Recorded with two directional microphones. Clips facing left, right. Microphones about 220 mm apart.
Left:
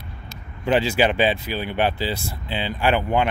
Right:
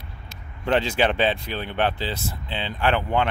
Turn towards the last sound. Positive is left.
turn(degrees=10)  # may be behind; listen again after turning